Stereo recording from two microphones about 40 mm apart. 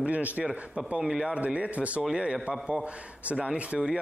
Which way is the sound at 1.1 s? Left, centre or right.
Centre.